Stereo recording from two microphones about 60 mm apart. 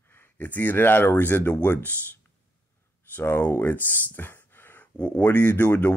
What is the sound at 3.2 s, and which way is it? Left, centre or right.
Speech, left.